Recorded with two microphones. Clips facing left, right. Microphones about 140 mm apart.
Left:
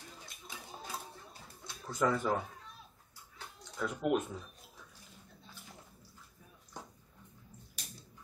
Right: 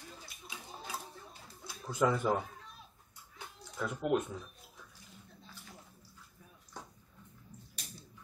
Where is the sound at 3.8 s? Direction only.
Centre (ahead or behind).